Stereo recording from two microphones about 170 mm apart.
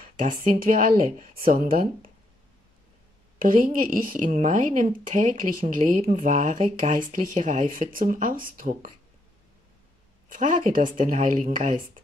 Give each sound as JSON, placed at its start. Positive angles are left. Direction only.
{"t": 0.2, "sound": "speech", "side_deg": -55}
{"t": 3.3, "sound": "a woman's voice", "side_deg": -55}
{"t": 10.3, "sound": "a woman's voice", "side_deg": -50}